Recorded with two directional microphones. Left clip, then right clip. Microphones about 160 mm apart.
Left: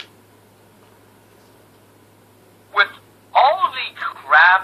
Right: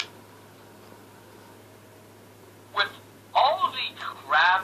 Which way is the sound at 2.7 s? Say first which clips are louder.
Left 9 dB; 40° left (ahead or behind).